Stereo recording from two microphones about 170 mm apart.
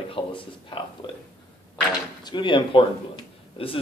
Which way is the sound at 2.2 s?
25° left (ahead or behind).